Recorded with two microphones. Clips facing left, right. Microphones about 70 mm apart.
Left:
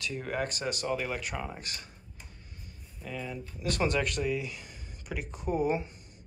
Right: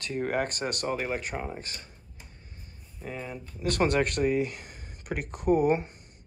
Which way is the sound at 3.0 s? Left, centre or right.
Right.